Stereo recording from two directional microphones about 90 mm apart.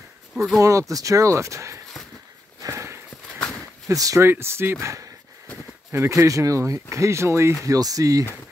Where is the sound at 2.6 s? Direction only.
35° right (ahead or behind).